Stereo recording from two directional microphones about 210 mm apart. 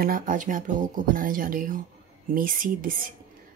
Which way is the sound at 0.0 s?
40° right (ahead or behind).